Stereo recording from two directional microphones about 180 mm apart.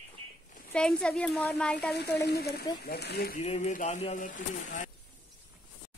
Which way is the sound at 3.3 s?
40° left (ahead or behind).